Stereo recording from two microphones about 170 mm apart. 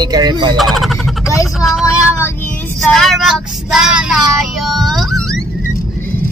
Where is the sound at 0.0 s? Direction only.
25° right (ahead or behind).